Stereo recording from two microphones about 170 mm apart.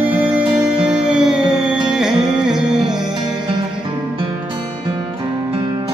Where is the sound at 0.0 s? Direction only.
10° right (ahead or behind).